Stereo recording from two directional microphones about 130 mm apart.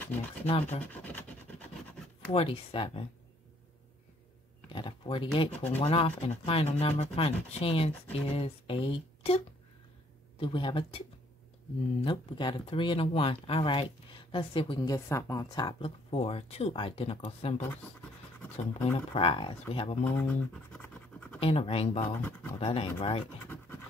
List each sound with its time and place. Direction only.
0.0 s speech: 15° left (ahead or behind)
0.5 s speech: 55° left (ahead or behind)
0.9 s rub: 10° left (ahead or behind)
2.3 s speech: 45° left (ahead or behind)
4.6 s speech: 40° left (ahead or behind)
10.4 s speech: 40° left (ahead or behind)
12.0 s speech: 40° left (ahead or behind)
14.9 s speech: 25° left (ahead or behind)
15.8 s speech: 45° left (ahead or behind)
18.7 s speech: 45° left (ahead or behind)
20.2 s scratch: 15° left (ahead or behind)
21.4 s speech: 50° left (ahead or behind)
23.4 s scratch: 15° left (ahead or behind)